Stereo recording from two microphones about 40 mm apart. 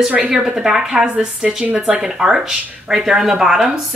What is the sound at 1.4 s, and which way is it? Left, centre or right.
A woman's voice, right.